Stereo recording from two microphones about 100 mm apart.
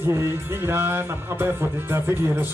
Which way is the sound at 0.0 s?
25° right (ahead or behind).